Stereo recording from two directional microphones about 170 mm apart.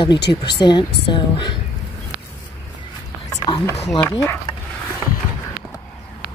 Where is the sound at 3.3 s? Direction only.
25° left (ahead or behind).